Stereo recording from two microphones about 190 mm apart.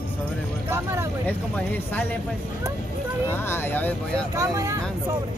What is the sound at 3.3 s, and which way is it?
Speech, 10° left (ahead or behind).